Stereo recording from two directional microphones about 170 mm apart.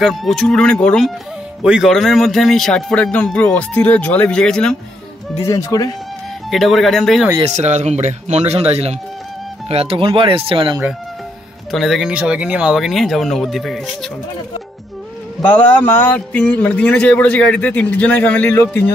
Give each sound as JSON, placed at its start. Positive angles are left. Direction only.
{"t": 0.0, "sound": "a man's voice", "side_deg": 0}
{"t": 5.4, "sound": "speech", "side_deg": 20}
{"t": 6.5, "sound": "a man's voice", "side_deg": 0}
{"t": 7.5, "sound": "speech", "side_deg": -40}
{"t": 11.7, "sound": "a man's voice", "side_deg": 0}
{"t": 15.4, "sound": "a man's voice", "side_deg": 10}